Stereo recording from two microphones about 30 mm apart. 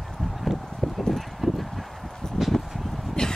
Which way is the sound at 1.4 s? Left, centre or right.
Centre.